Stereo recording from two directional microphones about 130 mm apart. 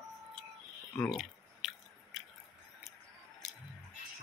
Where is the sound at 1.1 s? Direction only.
Centre (ahead or behind).